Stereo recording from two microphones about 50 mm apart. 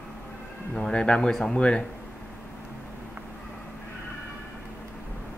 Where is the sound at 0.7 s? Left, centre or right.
Centre.